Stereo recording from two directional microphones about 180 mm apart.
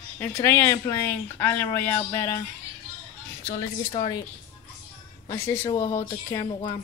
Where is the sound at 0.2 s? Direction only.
15° left (ahead or behind).